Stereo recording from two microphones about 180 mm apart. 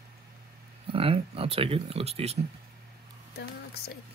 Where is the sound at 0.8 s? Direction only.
30° right (ahead or behind).